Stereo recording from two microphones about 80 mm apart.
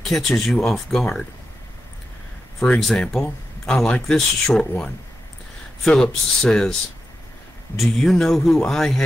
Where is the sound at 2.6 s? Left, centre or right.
Centre.